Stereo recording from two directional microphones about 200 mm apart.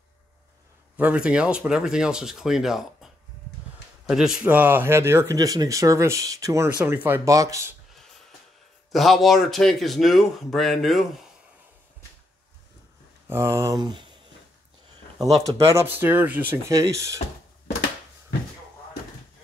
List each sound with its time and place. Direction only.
0.9 s speech: 5° right (ahead or behind)
4.1 s speech: 5° right (ahead or behind)
8.9 s speech: centre (ahead or behind)
13.3 s speech: 15° right (ahead or behind)
15.5 s speech: 15° right (ahead or behind)